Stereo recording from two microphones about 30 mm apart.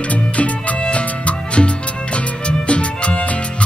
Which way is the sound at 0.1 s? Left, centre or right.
Left.